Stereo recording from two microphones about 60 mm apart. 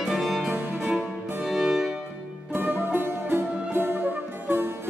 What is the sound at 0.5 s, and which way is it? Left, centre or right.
Music, right.